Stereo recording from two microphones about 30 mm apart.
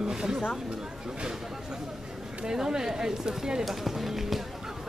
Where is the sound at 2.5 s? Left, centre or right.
Centre.